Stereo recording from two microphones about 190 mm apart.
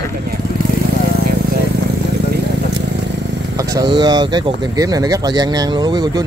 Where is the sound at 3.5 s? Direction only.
20° right (ahead or behind).